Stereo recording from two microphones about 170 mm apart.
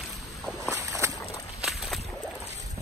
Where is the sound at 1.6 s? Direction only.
Centre (ahead or behind).